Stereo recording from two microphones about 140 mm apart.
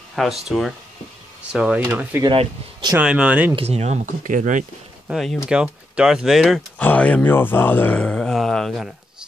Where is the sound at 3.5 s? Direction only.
45° right (ahead or behind); by 4.6 s 65° right (ahead or behind).